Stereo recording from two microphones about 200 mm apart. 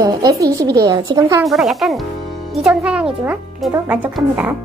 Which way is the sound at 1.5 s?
Centre (ahead or behind).